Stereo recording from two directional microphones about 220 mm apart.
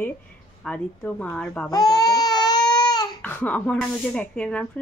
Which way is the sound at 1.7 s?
15° left (ahead or behind).